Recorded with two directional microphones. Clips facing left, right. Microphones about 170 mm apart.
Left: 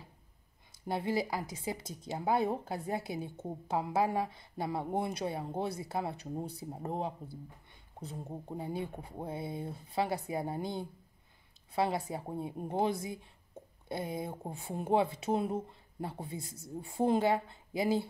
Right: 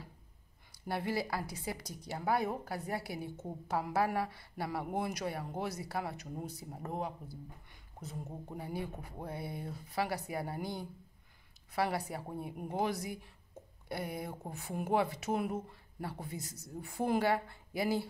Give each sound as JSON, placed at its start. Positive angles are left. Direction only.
{"t": 0.7, "sound": "speech", "side_deg": 20}
{"t": 8.3, "sound": "speech", "side_deg": 20}